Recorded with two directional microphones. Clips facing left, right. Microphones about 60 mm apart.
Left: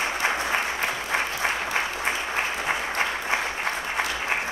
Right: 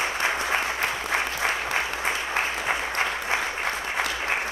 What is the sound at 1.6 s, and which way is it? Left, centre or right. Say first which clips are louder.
Applause: even; centre.